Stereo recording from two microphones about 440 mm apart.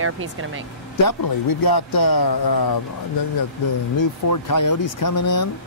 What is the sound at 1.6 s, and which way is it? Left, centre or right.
Speech, left.